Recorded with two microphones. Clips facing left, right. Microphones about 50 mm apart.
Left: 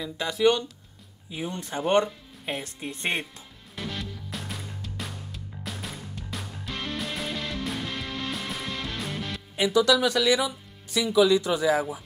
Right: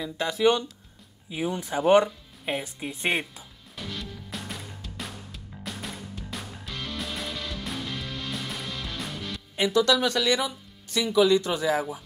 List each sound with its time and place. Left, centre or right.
0.0 s speech: centre
4.0 s music: centre
6.7 s music: left
7.0 s music: centre
9.3 s speech: centre